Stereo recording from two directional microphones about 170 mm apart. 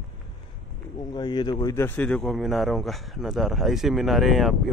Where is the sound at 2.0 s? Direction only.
5° left (ahead or behind).